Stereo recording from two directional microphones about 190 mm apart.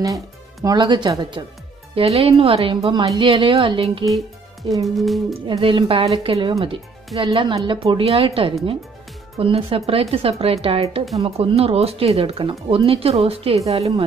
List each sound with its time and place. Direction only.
0.7 s a woman's voice: 25° right (ahead or behind)
4.8 s speech: centre (ahead or behind)
5.5 s a woman's voice: 25° right (ahead or behind)